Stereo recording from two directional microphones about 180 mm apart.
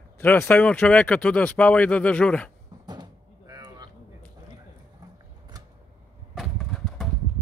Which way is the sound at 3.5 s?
25° right (ahead or behind).